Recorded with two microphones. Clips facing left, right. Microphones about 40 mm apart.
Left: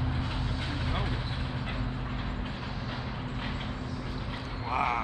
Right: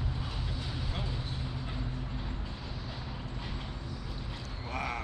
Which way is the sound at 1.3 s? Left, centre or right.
Left.